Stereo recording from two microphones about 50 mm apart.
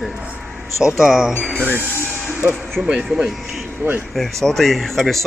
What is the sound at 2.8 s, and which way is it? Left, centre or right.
Speech, right.